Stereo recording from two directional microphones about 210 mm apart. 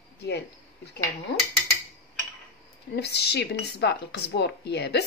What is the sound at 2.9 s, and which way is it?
Speech, 50° left (ahead or behind).